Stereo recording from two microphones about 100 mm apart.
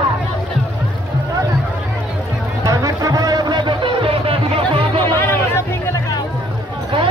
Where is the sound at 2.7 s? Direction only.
35° right (ahead or behind); by 4.6 s 65° right (ahead or behind).